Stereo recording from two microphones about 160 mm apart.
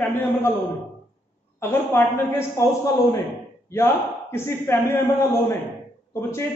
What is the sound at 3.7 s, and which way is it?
A man's voice, 15° left (ahead or behind).